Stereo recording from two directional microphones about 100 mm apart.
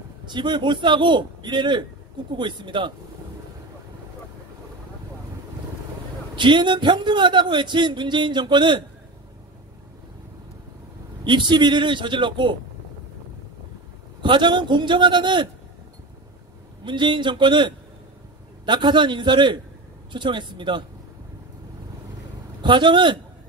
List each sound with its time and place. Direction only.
0.2 s a man's voice: 50° right (ahead or behind)
6.3 s a man's voice: 50° right (ahead or behind)
11.2 s a man's voice: 50° right (ahead or behind)
14.2 s a man's voice: 50° right (ahead or behind)
16.8 s a man's voice: 50° right (ahead or behind)
22.6 s a man's voice: 50° right (ahead or behind)